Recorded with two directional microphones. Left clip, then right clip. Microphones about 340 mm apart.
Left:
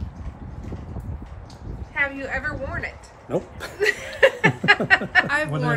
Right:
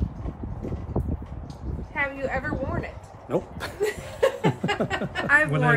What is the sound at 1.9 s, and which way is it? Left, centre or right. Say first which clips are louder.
A woman's voice: left 2 dB; centre.